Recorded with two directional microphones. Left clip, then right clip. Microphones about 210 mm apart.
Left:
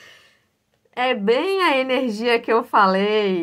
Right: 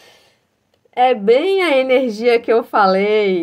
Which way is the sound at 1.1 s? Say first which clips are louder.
Right 3 dB; 5° left (ahead or behind).